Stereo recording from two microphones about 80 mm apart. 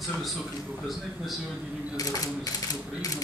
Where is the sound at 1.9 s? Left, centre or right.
Left.